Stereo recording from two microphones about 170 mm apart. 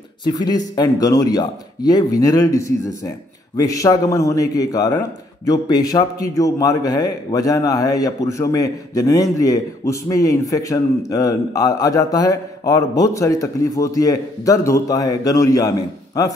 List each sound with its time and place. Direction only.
0.2 s a man's voice: 25° left (ahead or behind)